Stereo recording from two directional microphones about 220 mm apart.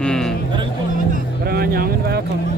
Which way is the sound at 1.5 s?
45° right (ahead or behind).